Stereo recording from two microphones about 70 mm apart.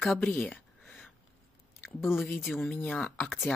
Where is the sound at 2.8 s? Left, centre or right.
Centre.